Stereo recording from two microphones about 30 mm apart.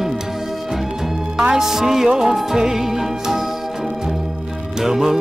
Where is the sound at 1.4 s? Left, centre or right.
Centre.